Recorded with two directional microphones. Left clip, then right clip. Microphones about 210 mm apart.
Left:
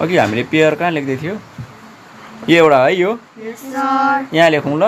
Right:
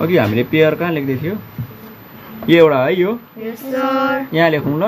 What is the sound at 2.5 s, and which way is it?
Speech, 15° left (ahead or behind).